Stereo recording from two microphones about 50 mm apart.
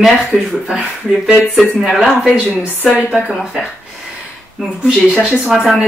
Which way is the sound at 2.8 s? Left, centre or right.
Right.